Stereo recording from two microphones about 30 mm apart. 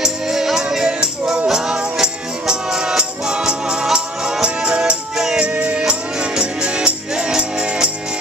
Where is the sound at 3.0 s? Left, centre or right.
Right.